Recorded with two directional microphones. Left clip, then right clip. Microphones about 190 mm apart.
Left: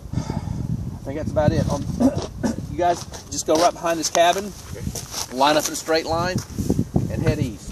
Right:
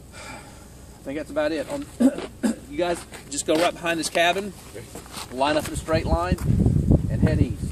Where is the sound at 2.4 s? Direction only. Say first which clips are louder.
Left 4 dB; 5° right (ahead or behind).